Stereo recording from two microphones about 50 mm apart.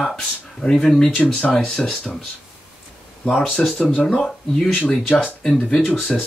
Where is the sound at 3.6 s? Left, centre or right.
Centre.